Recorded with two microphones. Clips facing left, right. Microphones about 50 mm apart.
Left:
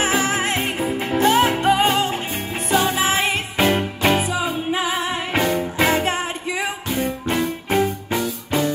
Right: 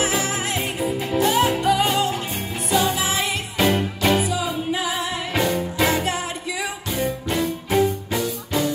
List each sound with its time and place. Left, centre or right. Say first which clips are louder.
0.0 s music: left 3 dB; left
5.4 s music: left 1 dB; centre
7.2 s music: left 2 dB; left